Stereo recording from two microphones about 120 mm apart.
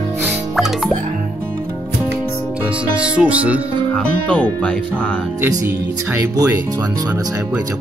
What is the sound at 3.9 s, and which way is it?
Speech, 10° left (ahead or behind).